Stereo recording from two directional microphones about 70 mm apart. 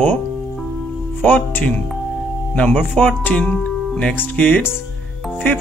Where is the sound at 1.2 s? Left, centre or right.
Left.